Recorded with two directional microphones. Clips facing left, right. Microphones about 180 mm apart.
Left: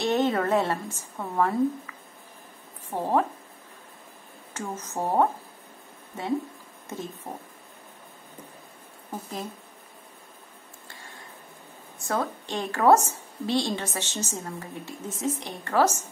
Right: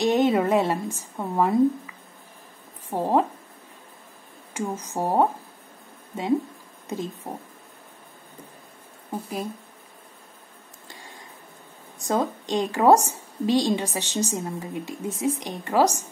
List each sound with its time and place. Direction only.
0.0 s a woman's voice: 15° right (ahead or behind)
4.6 s a woman's voice: 15° right (ahead or behind)
6.9 s a woman's voice: 15° right (ahead or behind)
9.1 s a woman's voice: 15° right (ahead or behind)
10.9 s a sound: 15° right (ahead or behind)
12.0 s a woman's voice: 15° right (ahead or behind)